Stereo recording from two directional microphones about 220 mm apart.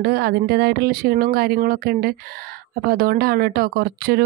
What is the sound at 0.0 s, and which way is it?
Speech, 45° right (ahead or behind).